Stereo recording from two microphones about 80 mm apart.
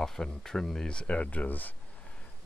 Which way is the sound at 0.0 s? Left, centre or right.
Centre.